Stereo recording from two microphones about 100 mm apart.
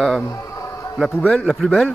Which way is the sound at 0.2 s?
35° left (ahead or behind).